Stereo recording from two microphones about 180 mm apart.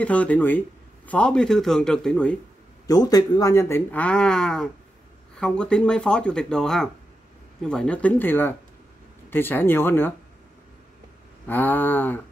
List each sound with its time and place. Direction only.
0.0 s a man's voice: 10° left (ahead or behind)
2.9 s a man's voice: 20° left (ahead or behind)
11.4 s a man's voice: 10° left (ahead or behind)